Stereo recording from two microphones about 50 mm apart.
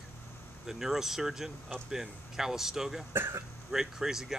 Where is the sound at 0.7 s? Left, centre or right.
Centre.